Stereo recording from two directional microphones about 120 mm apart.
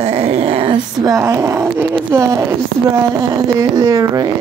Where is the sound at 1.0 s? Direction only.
30° right (ahead or behind).